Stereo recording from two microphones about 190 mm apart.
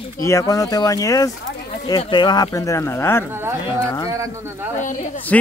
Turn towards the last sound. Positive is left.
turn(degrees=5)  # may be behind; listen again after turning